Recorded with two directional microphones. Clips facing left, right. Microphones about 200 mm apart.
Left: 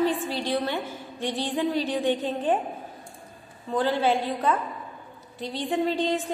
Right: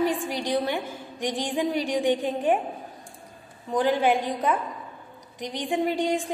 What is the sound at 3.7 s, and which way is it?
A woman's voice, 15° right (ahead or behind).